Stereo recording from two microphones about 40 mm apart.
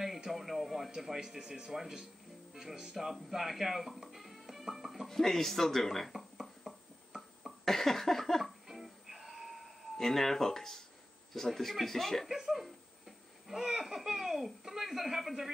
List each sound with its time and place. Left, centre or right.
0.3 s speech: centre
1.4 s speech: centre
3.1 s speech: centre
5.0 s speech: centre
6.1 s a sound: centre
7.6 s a sound: centre
8.6 s music: centre
9.9 s speech: centre
12.3 s speech: centre